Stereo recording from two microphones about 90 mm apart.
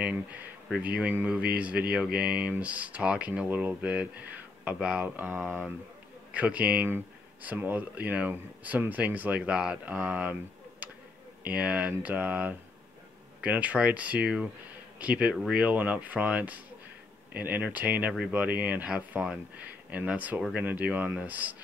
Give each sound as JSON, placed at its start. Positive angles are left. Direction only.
{"t": 0.8, "sound": "speech", "side_deg": -15}
{"t": 5.4, "sound": "speech", "side_deg": 5}
{"t": 6.3, "sound": "speech", "side_deg": -15}
{"t": 11.4, "sound": "speech", "side_deg": -10}